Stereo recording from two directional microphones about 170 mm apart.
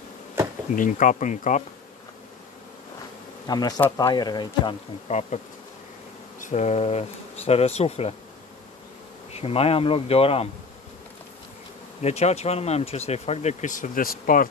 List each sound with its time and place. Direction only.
0.7 s speech: 50° left (ahead or behind)
3.4 s speech: 25° left (ahead or behind)
5.0 s speech: 40° left (ahead or behind)
6.4 s speech: 40° left (ahead or behind)
9.3 s speech: 35° left (ahead or behind)
12.0 s speech: 40° left (ahead or behind)